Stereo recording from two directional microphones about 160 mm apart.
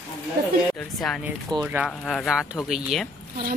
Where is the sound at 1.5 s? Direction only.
25° right (ahead or behind).